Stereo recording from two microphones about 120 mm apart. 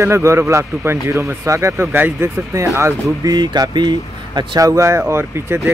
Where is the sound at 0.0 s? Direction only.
25° right (ahead or behind).